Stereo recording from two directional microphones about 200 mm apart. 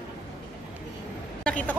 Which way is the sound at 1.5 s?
5° left (ahead or behind).